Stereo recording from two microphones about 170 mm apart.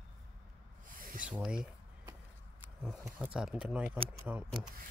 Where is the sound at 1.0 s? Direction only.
55° right (ahead or behind).